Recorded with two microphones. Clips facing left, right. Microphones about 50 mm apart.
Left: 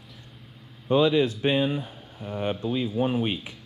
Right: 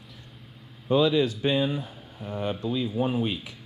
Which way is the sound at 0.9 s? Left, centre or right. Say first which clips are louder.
Left 1 dB; centre.